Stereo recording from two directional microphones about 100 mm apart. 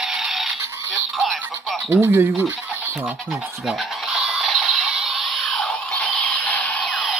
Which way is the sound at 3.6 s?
Centre (ahead or behind).